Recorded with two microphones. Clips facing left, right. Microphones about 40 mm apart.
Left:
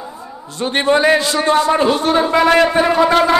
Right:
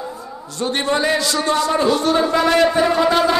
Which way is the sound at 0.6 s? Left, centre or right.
Left.